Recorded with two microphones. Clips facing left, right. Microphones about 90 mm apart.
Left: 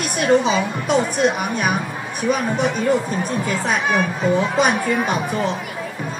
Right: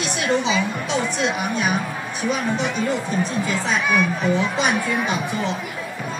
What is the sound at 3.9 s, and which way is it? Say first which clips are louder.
Speech: left 1 dB; 50° left (ahead or behind).